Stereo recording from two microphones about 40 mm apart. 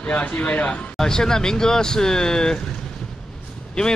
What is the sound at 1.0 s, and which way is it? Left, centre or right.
Speech, centre.